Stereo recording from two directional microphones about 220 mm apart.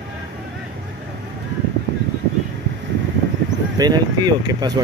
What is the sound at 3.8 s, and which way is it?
Speech, 20° right (ahead or behind).